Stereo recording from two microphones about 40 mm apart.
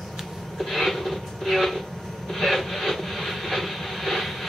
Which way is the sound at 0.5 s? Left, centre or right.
Centre.